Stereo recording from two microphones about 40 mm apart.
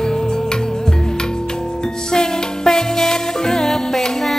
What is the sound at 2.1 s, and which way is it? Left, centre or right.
Music, centre.